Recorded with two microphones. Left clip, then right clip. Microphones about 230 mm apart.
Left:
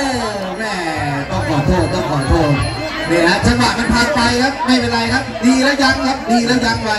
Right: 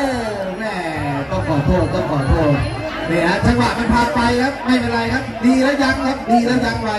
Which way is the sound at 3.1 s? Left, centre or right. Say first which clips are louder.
Left 3 dB; left.